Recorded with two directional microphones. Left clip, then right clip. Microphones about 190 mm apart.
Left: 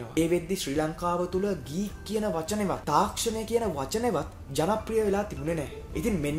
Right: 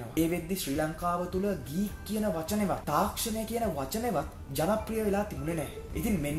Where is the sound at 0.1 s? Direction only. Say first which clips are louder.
Left 4 dB; 25° left (ahead or behind).